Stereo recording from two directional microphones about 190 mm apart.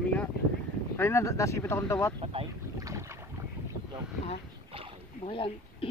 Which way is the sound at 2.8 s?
15° right (ahead or behind).